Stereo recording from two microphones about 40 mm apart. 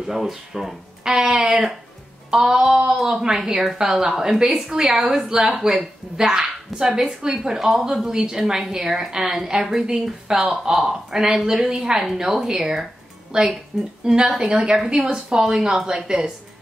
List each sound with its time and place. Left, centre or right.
0.0 s a woman's voice: centre
1.1 s a woman's voice: centre
14.5 s a woman's voice: right; by 16.3 s centre